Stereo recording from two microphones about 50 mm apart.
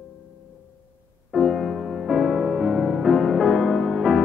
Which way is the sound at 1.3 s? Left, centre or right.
Centre.